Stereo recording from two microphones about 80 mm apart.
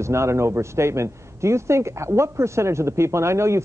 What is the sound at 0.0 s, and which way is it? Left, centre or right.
Speech, right.